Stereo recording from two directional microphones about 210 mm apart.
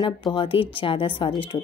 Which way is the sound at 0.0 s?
25° left (ahead or behind).